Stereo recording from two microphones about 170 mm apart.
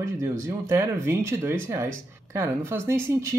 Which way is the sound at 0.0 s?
20° right (ahead or behind).